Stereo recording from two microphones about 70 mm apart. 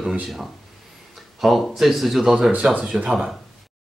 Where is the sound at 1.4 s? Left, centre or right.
Centre.